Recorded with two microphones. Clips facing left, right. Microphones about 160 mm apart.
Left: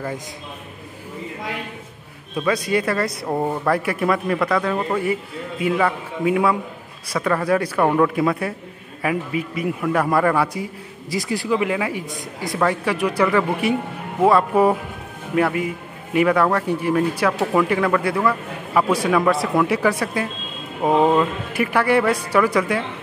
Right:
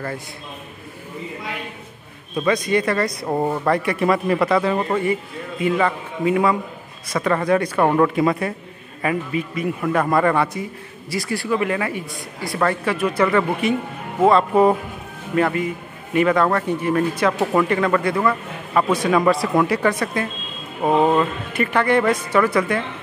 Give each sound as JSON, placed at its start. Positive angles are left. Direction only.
{"t": 2.3, "sound": "a man's voice", "side_deg": 5}
{"t": 9.6, "sound": "a man's voice", "side_deg": 5}
{"t": 17.4, "sound": "a man's voice", "side_deg": -5}